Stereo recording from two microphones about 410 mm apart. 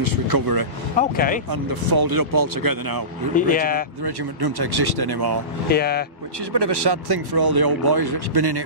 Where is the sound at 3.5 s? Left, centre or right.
Left.